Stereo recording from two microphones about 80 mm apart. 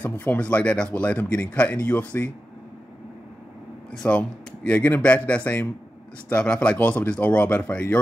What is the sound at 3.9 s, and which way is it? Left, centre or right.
Speech, centre.